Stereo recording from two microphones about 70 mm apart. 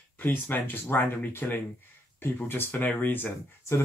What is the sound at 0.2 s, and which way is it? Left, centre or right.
Speech, left.